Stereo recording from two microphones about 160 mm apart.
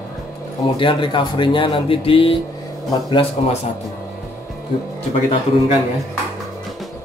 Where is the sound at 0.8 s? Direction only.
30° left (ahead or behind).